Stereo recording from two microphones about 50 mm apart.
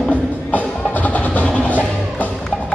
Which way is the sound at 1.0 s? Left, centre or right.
Left.